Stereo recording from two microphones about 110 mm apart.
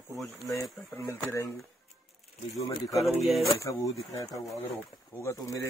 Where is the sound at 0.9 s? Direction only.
20° left (ahead or behind).